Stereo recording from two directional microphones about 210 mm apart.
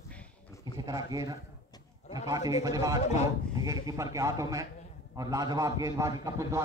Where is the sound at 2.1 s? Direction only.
15° right (ahead or behind).